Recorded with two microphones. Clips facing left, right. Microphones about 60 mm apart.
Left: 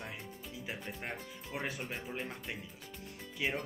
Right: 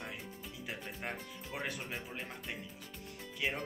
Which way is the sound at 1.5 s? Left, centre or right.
Centre.